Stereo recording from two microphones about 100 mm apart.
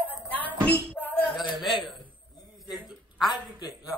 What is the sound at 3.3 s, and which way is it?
Speech, 40° left (ahead or behind).